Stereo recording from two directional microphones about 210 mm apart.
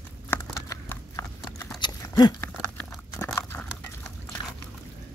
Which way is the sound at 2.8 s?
5° left (ahead or behind).